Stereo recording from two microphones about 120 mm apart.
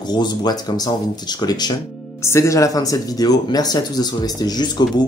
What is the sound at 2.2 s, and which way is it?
Speech, 25° left (ahead or behind).